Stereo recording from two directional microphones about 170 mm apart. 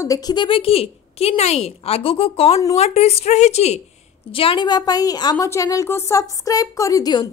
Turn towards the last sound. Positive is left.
turn(degrees=25)  # may be behind; listen again after turning